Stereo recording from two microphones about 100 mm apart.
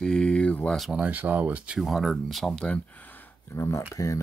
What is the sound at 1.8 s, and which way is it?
Speech, centre (ahead or behind).